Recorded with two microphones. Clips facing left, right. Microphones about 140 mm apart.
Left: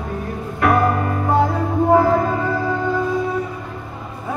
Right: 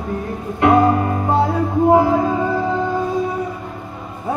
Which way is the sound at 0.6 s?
25° right (ahead or behind).